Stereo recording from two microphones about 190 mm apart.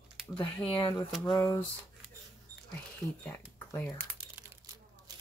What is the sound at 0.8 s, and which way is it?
Speech, 25° left (ahead or behind).